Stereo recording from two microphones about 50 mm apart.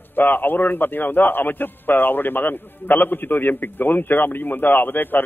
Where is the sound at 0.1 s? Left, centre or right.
Left.